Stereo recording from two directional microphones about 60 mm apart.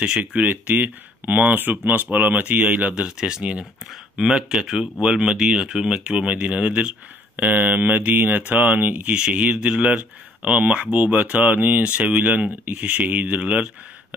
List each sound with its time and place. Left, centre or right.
0.0 s speech: centre
7.4 s speech: right